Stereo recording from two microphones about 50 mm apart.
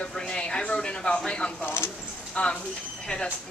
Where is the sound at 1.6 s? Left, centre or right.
Left.